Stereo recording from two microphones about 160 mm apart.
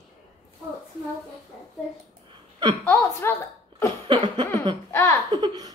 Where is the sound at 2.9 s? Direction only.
15° left (ahead or behind).